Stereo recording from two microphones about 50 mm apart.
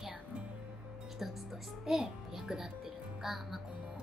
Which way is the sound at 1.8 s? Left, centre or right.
Centre.